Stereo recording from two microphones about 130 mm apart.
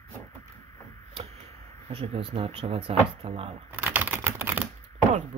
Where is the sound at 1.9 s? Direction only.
50° right (ahead or behind).